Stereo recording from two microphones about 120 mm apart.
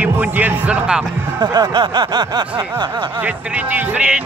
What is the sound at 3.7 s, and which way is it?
Speech, 10° right (ahead or behind).